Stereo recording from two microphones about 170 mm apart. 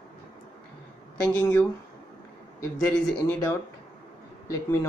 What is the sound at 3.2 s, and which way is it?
Speech, 15° left (ahead or behind).